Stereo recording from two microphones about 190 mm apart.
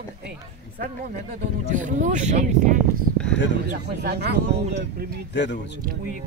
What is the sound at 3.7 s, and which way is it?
Speech, 60° right (ahead or behind).